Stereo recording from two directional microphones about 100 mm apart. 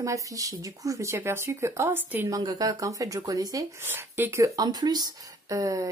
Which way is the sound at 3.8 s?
25° right (ahead or behind).